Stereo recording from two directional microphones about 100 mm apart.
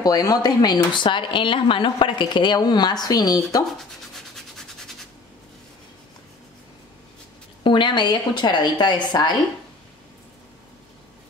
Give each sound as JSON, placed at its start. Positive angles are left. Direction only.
{"t": 0.0, "sound": "speech", "side_deg": 40}
{"t": 4.1, "sound": "a sound", "side_deg": 5}
{"t": 7.6, "sound": "speech", "side_deg": 50}